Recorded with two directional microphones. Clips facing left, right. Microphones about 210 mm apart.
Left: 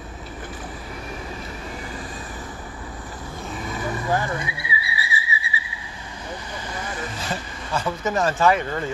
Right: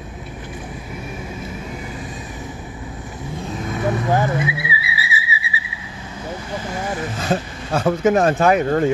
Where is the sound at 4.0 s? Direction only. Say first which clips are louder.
Right 3 dB; 20° right (ahead or behind).